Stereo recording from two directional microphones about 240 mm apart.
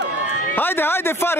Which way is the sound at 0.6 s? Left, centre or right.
Centre.